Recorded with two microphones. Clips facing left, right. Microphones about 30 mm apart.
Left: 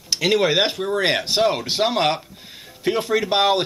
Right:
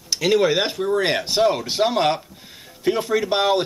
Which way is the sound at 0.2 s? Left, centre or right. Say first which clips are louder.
Even; centre.